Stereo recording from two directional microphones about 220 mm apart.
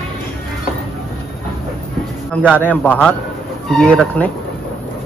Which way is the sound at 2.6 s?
5° left (ahead or behind).